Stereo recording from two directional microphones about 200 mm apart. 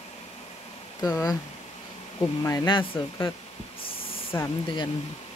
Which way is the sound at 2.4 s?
20° left (ahead or behind).